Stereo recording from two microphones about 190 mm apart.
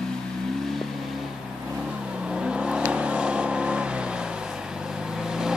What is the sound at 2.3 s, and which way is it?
Vehicle, 5° right (ahead or behind).